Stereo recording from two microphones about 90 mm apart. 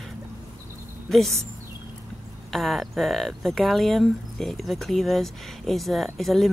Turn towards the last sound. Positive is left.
turn(degrees=0)  # may be behind; listen again after turning